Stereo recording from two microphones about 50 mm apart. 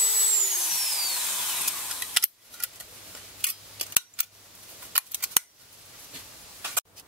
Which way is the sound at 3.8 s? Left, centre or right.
Right.